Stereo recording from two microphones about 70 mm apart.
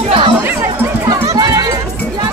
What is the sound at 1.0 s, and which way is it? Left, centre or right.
Music, right.